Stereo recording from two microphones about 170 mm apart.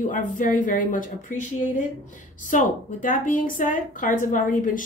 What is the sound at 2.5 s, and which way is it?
A woman's voice, 50° left (ahead or behind).